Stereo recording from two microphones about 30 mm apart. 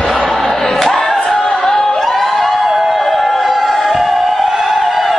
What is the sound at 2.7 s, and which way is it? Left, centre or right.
Music, centre.